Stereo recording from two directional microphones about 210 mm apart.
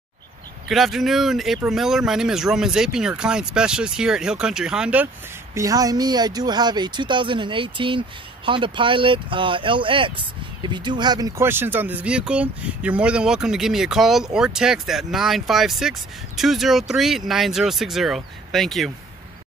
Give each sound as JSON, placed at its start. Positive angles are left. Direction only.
{"t": 0.7, "sound": "speech", "side_deg": 0}
{"t": 5.5, "sound": "speech", "side_deg": -15}